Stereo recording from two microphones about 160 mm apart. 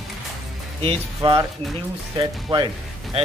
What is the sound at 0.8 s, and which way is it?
Speech, 35° right (ahead or behind).